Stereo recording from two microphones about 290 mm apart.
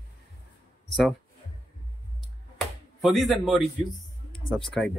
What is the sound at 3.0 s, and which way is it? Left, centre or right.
Speech, centre.